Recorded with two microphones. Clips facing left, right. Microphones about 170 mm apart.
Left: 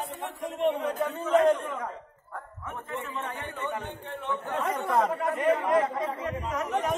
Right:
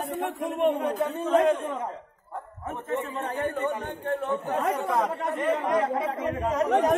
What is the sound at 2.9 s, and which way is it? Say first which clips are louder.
A man's voice: right 6 dB; 45° right (ahead or behind).